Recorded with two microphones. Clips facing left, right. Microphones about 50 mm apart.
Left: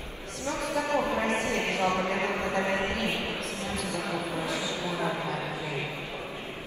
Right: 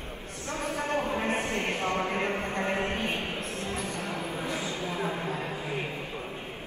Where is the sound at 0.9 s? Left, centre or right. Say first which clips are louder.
Left 1 dB; left.